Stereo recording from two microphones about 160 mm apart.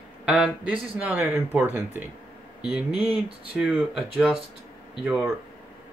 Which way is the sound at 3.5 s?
5° right (ahead or behind).